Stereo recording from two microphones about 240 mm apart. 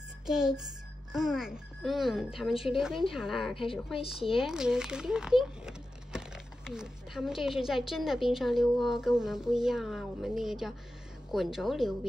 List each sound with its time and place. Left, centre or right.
0.3 s speech: centre
3.5 s a woman's voice: left
4.4 s speech: centre